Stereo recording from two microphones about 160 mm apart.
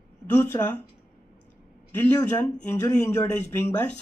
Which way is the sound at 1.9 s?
15° left (ahead or behind).